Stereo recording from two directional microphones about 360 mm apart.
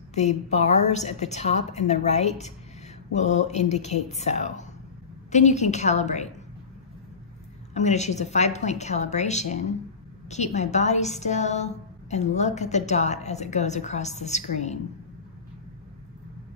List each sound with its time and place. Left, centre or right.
0.1 s a woman's voice: centre
7.7 s a woman's voice: centre